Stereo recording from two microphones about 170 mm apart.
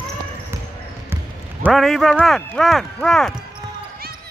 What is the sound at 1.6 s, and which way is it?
Speech, centre (ahead or behind).